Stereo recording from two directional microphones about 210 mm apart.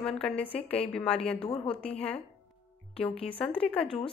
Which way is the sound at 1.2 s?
25° left (ahead or behind).